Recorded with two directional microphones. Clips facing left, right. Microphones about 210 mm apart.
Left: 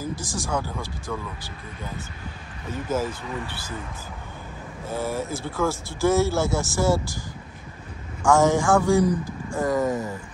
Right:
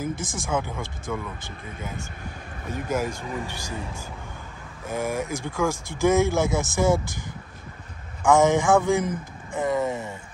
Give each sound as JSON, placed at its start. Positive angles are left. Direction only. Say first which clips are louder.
{"t": 0.1, "sound": "speech", "louder": "even", "side_deg": -55}
{"t": 0.5, "sound": "speech", "louder": "right 2 dB", "side_deg": -20}
{"t": 2.7, "sound": "speech", "louder": "even", "side_deg": -15}
{"t": 4.8, "sound": "speech", "louder": "right 1 dB", "side_deg": -15}
{"t": 8.3, "sound": "speech", "louder": "right 1 dB", "side_deg": -20}